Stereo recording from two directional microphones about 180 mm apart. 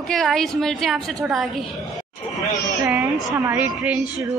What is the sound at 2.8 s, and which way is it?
Speech, 15° right (ahead or behind).